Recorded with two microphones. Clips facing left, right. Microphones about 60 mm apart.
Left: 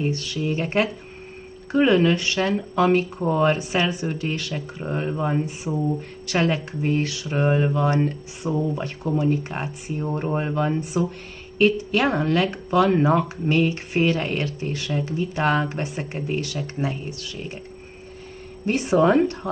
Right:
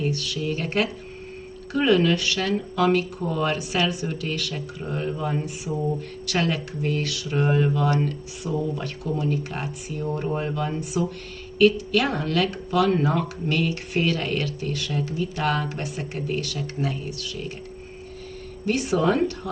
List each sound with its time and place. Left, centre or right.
0.0 s speech: left
18.7 s speech: left